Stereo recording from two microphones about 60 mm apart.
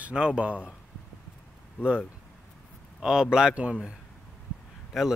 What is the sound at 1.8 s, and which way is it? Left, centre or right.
Speech, left.